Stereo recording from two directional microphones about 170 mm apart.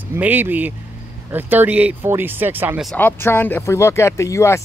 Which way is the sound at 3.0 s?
10° left (ahead or behind).